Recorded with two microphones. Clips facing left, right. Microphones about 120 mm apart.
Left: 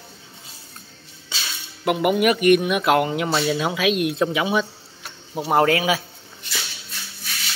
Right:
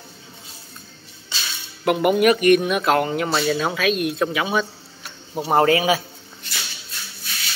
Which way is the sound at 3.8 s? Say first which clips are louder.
Left 1 dB; 20° left (ahead or behind).